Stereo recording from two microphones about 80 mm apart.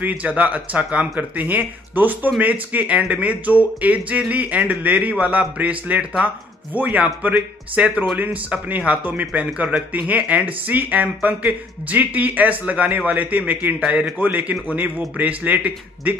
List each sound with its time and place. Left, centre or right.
0.0 s speech: centre